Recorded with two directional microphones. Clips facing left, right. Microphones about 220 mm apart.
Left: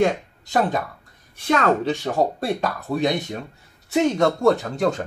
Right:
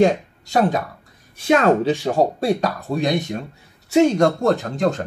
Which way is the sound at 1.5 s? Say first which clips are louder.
Right 4 dB; 15° right (ahead or behind).